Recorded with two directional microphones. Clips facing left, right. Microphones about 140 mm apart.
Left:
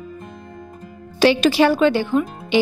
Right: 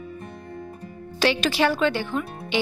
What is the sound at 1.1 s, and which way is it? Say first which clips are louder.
A woman's voice: left 7 dB; 10° left (ahead or behind).